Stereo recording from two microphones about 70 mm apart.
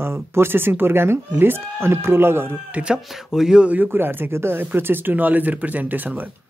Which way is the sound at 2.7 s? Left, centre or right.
Centre.